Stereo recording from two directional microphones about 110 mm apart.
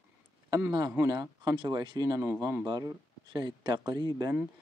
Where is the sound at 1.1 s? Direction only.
40° right (ahead or behind).